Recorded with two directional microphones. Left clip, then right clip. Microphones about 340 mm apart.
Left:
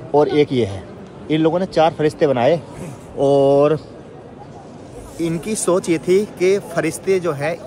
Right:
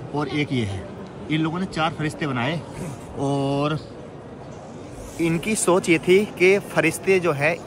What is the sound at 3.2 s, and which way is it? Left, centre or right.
Speech, left.